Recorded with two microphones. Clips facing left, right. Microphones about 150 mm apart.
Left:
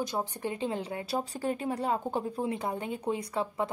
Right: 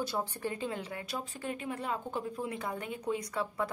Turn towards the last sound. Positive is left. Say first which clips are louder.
# left 3 dB
turn(degrees=25)  # may be behind; listen again after turning